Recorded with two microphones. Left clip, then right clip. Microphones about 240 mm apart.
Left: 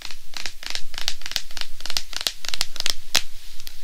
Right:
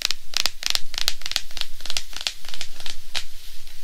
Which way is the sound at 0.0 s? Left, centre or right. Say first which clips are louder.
Right 10 dB; right.